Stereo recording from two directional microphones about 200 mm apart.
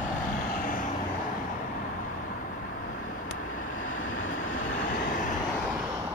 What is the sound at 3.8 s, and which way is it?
Vehicle, 90° left.